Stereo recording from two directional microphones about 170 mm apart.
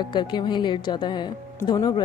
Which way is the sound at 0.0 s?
25° left (ahead or behind).